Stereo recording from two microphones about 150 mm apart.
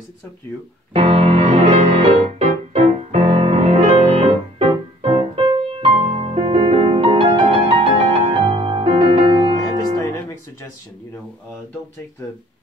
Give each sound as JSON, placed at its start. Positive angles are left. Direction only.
{"t": 0.9, "sound": "music", "side_deg": -40}